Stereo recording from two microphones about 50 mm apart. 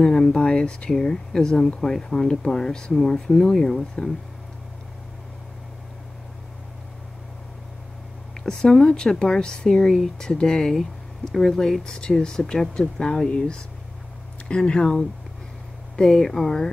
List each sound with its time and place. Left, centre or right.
0.0 s speech: centre
8.5 s speech: centre
16.0 s speech: centre